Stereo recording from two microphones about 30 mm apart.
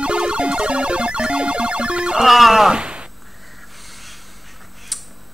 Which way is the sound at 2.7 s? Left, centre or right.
Right.